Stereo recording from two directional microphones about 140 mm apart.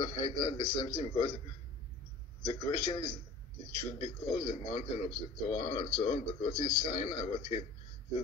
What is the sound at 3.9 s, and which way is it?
Speech, 45° left (ahead or behind).